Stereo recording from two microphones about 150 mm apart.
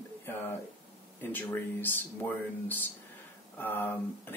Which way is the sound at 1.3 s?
15° left (ahead or behind).